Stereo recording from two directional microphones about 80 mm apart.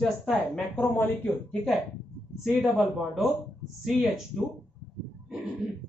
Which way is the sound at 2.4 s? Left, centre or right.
Centre.